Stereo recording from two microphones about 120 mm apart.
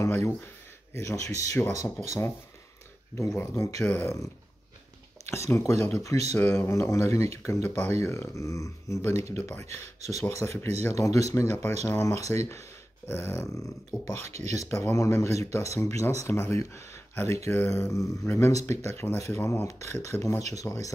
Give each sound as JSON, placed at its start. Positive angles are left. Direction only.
{"t": 0.0, "sound": "speech", "side_deg": 25}
{"t": 3.3, "sound": "speech", "side_deg": 25}
{"t": 5.3, "sound": "speech", "side_deg": 25}
{"t": 14.2, "sound": "speech", "side_deg": -65}
{"t": 14.5, "sound": "speech", "side_deg": 25}